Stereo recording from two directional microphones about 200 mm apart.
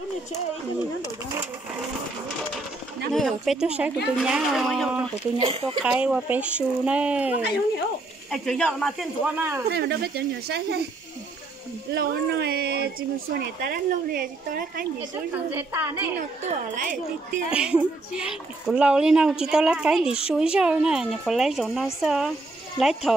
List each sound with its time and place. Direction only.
3.1 s speech: centre (ahead or behind)
5.4 s speech: 30° right (ahead or behind)
5.9 s speech: 5° right (ahead or behind)
9.7 s speech: 55° right (ahead or behind)
11.9 s speech: 50° right (ahead or behind)
15.5 s speech: 10° right (ahead or behind)
16.2 s a woman's voice: 40° right (ahead or behind)
17.5 s speech: 5° right (ahead or behind)